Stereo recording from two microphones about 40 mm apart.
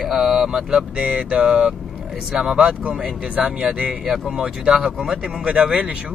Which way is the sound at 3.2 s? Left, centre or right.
Right.